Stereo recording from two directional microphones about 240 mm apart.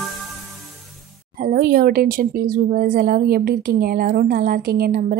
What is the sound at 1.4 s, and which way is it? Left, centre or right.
Speech, right.